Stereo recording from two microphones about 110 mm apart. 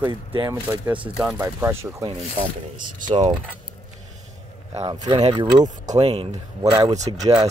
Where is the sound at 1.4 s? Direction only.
20° right (ahead or behind).